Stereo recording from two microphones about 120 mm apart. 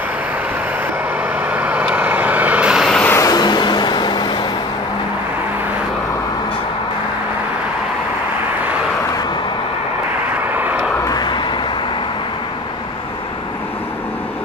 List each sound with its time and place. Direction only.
1.5 s vehicle: 10° right (ahead or behind)
3.2 s vehicle: 35° left (ahead or behind)
11.1 s vehicle: 40° left (ahead or behind)